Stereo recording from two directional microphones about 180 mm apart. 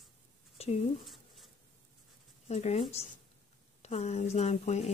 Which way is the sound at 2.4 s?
35° left (ahead or behind).